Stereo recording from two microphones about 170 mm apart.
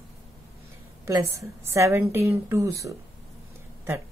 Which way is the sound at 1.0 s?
15° right (ahead or behind).